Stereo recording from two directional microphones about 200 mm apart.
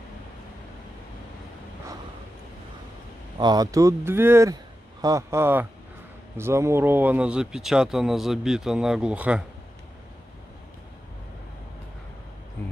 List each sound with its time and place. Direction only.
3.3 s speech: 20° right (ahead or behind)